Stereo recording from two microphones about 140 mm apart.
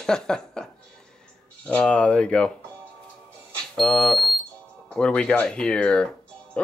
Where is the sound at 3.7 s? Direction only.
Centre (ahead or behind).